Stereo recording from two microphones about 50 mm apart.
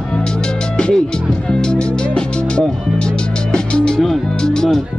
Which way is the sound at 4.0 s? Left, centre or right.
Centre.